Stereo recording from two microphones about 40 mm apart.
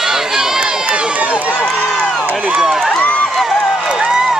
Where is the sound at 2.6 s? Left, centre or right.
Centre.